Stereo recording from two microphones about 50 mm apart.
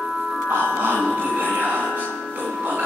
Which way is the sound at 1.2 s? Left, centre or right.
Right.